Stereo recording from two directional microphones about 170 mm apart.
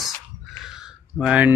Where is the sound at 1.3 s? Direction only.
5° right (ahead or behind).